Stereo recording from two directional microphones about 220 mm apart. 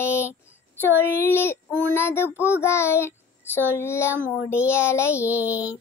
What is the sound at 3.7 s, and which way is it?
Child singing, 10° left (ahead or behind).